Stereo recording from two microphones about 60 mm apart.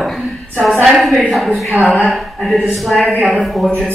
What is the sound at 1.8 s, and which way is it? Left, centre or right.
Speech, right.